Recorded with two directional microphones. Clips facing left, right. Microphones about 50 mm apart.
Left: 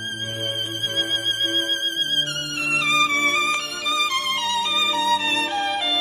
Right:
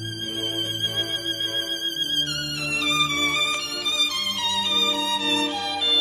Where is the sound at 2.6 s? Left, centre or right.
Left.